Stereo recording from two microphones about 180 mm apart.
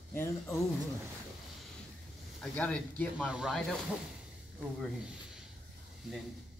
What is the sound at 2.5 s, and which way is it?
Speech, 5° left (ahead or behind).